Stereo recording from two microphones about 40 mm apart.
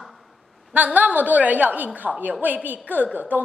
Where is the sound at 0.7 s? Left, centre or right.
Right.